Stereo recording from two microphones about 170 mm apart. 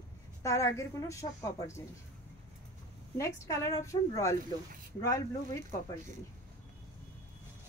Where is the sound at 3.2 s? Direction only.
20° left (ahead or behind).